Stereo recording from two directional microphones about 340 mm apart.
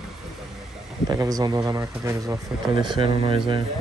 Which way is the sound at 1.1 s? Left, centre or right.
Centre.